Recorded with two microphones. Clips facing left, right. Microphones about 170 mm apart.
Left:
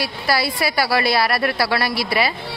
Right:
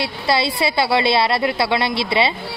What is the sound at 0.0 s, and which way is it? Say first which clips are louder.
A woman's voice: right 2 dB; 25° right (ahead or behind).